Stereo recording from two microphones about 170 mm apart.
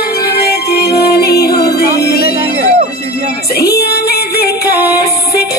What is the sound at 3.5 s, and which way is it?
Female singing, 70° left (ahead or behind).